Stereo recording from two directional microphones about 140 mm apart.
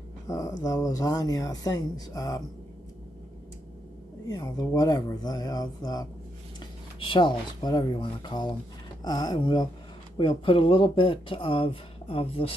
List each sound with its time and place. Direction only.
0.3 s speech: 25° left (ahead or behind)
4.3 s speech: 25° left (ahead or behind)